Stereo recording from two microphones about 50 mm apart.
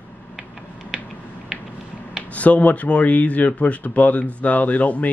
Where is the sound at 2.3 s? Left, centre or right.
Left.